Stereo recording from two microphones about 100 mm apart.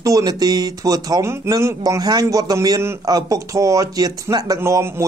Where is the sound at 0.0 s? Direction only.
35° right (ahead or behind).